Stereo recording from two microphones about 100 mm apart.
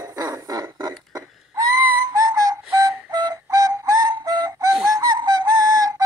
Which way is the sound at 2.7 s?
40° right (ahead or behind).